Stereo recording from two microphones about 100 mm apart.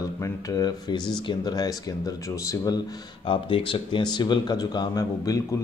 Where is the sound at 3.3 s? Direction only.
60° left (ahead or behind).